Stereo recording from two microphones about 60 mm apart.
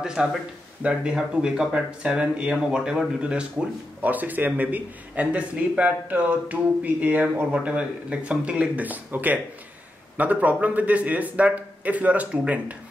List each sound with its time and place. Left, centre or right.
0.0 s speech: centre
4.0 s speech: right